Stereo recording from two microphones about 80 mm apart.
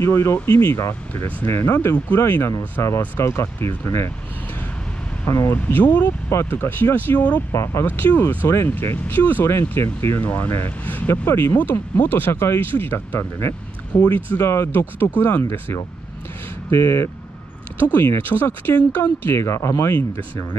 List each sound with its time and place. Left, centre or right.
0.0 s speech: left
5.2 s speech: left
7.5 s speech: left
7.8 s speech: left
10.2 s speech: left
11.2 s speech: left
14.0 s speech: left
16.7 s speech: left